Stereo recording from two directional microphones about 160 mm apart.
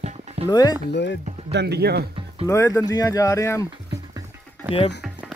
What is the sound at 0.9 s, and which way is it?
Speech, 90° left.